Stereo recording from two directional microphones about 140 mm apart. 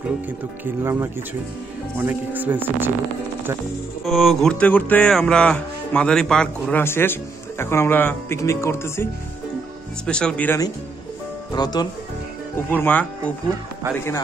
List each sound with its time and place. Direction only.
0.7 s speech: 15° right (ahead or behind)
4.0 s speech: centre (ahead or behind)
6.8 s speech: 15° left (ahead or behind)
10.0 s speech: 5° left (ahead or behind)
11.5 s speech: 30° left (ahead or behind)
12.5 s speech: 15° left (ahead or behind)